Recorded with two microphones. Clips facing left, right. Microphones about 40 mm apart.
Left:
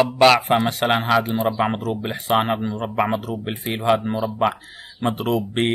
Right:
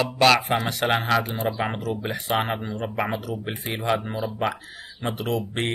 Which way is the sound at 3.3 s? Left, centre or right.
Left.